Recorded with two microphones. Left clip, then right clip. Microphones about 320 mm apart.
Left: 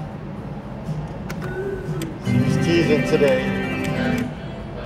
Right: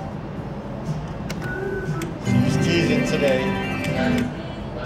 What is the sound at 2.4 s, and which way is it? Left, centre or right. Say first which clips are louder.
Music: left 3 dB; centre.